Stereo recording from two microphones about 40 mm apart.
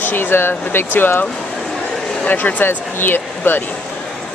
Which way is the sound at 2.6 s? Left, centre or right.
Left.